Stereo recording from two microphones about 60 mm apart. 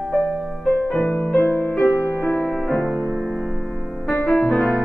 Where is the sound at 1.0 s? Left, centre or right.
Left.